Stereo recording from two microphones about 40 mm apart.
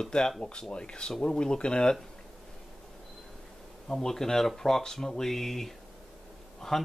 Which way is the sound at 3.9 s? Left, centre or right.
Centre.